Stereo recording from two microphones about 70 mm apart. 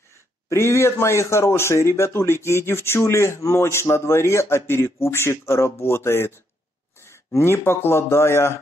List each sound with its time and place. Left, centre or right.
0.5 s speech: left